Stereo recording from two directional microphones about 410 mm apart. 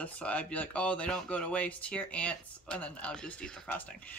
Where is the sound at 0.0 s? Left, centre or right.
Centre.